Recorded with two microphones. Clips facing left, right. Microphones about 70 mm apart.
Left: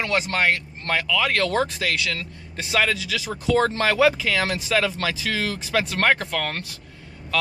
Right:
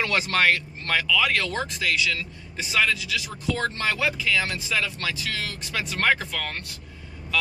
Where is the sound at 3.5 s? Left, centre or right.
Left.